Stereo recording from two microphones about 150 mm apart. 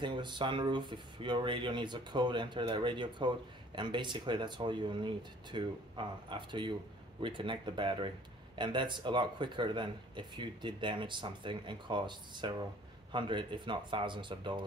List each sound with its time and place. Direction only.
0.0 s speech: 30° right (ahead or behind)